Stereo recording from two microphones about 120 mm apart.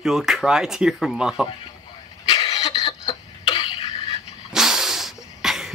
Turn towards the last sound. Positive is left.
turn(degrees=-5)  # may be behind; listen again after turning